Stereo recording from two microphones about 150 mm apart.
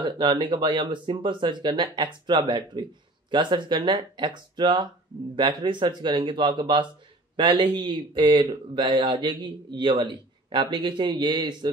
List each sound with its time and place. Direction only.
0.0 s a man's voice: 30° right (ahead or behind)